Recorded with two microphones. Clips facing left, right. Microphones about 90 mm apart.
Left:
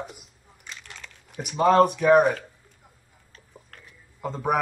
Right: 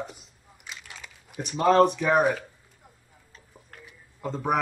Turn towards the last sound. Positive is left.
turn(degrees=5)  # may be behind; listen again after turning